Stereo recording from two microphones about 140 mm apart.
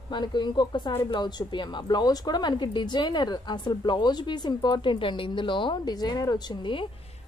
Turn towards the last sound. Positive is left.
turn(degrees=35)  # may be behind; listen again after turning